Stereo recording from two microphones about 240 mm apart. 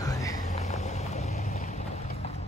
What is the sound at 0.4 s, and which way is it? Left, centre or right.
Vehicle, left.